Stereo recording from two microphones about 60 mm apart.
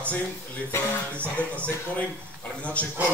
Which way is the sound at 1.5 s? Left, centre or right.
Left.